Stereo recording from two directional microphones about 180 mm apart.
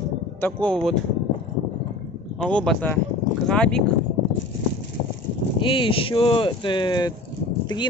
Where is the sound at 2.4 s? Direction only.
5° left (ahead or behind).